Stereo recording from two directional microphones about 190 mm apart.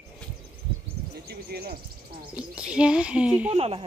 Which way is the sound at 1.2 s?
55° right (ahead or behind).